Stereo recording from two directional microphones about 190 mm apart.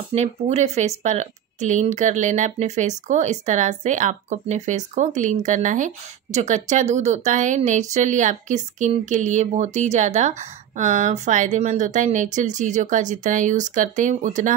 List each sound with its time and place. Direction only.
0.1 s speech: 35° right (ahead or behind)